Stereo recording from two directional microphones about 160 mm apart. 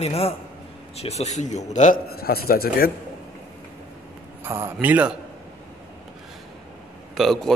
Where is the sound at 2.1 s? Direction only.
75° left (ahead or behind).